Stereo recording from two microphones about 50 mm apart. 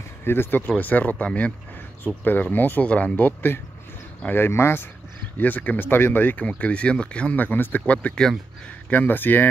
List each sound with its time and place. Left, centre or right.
0.2 s speech: left
0.7 s speech: left
2.2 s speech: left
4.5 s speech: left
5.4 s speech: left
6.3 s speech: left
7.3 s speech: left
7.8 s speech: left